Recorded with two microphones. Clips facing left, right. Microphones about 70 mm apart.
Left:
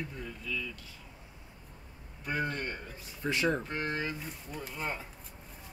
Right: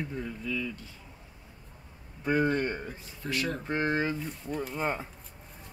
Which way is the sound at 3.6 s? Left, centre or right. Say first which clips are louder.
Right 6 dB; right.